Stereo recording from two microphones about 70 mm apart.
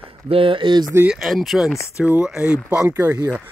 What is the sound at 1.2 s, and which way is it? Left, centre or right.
Speech, centre.